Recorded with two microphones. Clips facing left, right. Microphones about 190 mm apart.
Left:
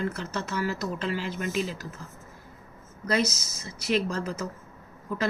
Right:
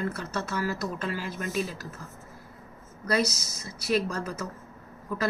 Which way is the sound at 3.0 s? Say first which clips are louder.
Even; 25° left (ahead or behind).